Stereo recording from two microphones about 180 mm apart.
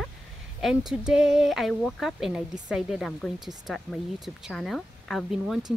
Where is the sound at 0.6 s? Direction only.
Centre (ahead or behind).